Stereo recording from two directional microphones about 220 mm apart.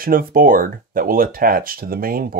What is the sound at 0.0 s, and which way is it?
Speech, 40° right (ahead or behind).